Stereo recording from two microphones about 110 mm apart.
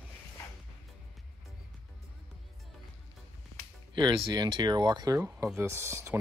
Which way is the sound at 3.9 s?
40° right (ahead or behind).